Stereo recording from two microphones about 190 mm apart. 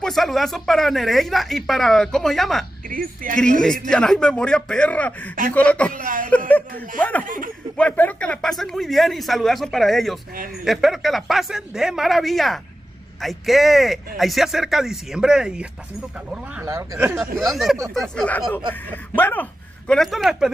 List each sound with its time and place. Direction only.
0.0 s speech: centre (ahead or behind)
2.9 s speech: 45° right (ahead or behind)
3.3 s speech: 5° left (ahead or behind)
5.9 s speech: 45° right (ahead or behind)
7.0 s speech: 10° left (ahead or behind)
7.2 s speech: 45° right (ahead or behind)
7.7 s speech: 5° left (ahead or behind)
16.6 s speech: 15° right (ahead or behind)
17.9 s speech: 5° left (ahead or behind)